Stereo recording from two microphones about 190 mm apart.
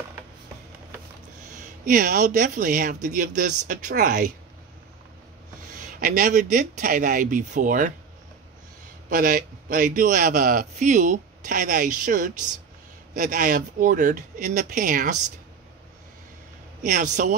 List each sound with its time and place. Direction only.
1.5 s a man's voice: 40° right (ahead or behind)
5.7 s speech: 40° right (ahead or behind)
9.1 s a man's voice: 45° right (ahead or behind)
16.8 s speech: 40° right (ahead or behind)